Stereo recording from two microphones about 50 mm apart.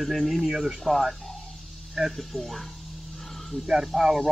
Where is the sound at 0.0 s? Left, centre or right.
Centre.